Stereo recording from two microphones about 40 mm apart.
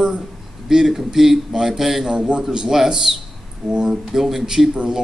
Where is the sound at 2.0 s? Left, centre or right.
Right.